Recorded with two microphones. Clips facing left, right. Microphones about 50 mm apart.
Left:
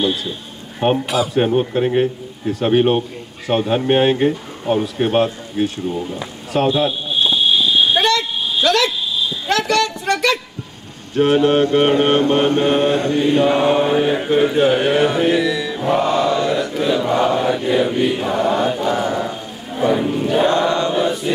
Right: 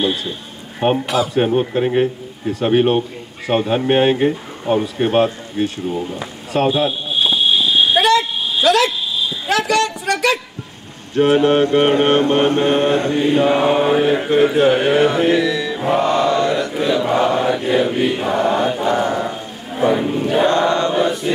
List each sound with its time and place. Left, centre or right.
0.0 s a man's voice: centre
6.5 s a sound: centre
11.1 s mantra: centre
16.1 s chant: centre
16.8 s a man's voice: centre
18.9 s chant: centre